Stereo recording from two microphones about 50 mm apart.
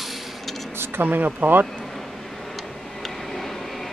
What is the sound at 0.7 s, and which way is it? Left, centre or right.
Speech, right.